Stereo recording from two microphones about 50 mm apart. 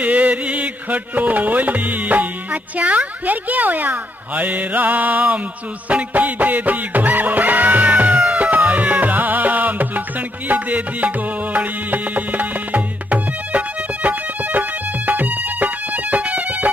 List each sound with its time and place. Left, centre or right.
0.0 s music: right